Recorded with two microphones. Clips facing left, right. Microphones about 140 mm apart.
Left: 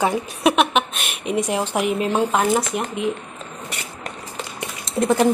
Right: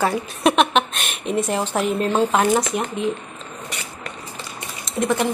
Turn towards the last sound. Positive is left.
turn(degrees=30)  # may be behind; listen again after turning